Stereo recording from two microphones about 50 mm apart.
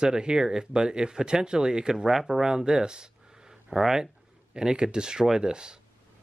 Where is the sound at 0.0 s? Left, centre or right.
Centre.